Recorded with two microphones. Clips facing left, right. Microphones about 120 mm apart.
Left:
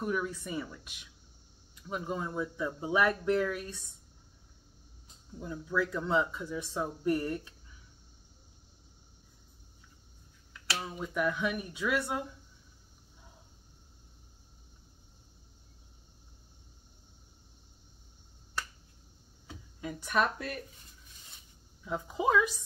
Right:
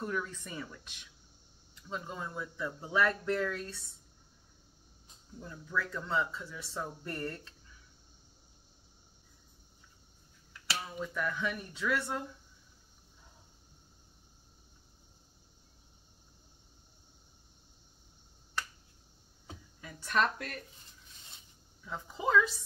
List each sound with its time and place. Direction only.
0.0 s speech: 15° left (ahead or behind)
5.4 s speech: 15° left (ahead or behind)
11.0 s speech: 15° left (ahead or behind)
19.8 s speech: 15° left (ahead or behind)
21.8 s speech: 15° left (ahead or behind)